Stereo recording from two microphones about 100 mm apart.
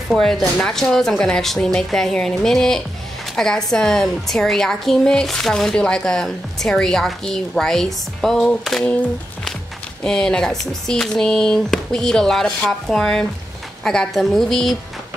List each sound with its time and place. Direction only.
0.1 s a woman's voice: 5° left (ahead or behind)
10.0 s a woman's voice: 5° left (ahead or behind)